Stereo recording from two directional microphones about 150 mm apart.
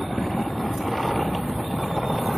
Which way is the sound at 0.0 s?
Centre (ahead or behind).